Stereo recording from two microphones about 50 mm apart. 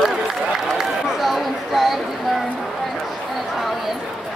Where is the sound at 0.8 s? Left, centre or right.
Centre.